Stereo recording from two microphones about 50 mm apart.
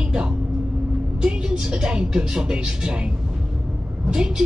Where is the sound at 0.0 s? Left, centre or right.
Right.